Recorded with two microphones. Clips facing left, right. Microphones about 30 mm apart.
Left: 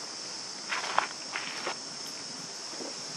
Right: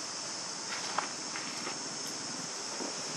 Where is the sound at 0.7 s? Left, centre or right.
Left.